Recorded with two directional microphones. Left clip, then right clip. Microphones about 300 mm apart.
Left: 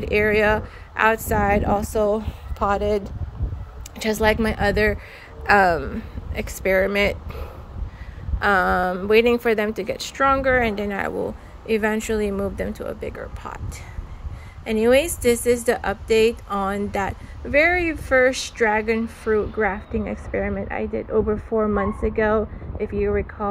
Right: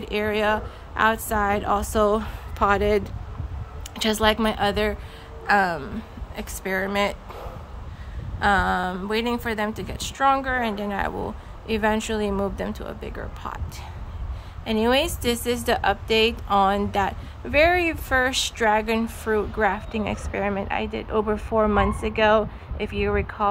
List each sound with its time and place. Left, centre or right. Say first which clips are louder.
0.1 s speech: left 4 dB; centre
14.6 s speech: left 4 dB; centre
19.9 s speech: even; right
20.5 s speech: even; centre
22.8 s speech: left 2 dB; right